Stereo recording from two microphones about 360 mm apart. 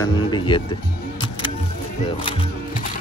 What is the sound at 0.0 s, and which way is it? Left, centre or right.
Speech, centre.